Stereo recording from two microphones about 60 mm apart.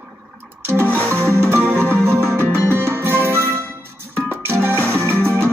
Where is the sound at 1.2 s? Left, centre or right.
Right.